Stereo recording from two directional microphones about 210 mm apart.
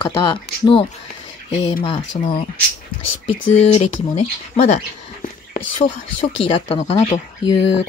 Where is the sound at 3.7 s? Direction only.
30° left (ahead or behind).